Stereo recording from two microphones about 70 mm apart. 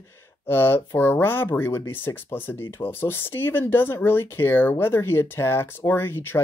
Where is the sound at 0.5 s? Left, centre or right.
Left.